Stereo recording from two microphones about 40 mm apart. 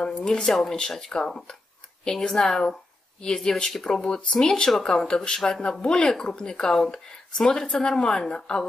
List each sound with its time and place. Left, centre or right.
0.0 s speech: left
0.5 s speech: centre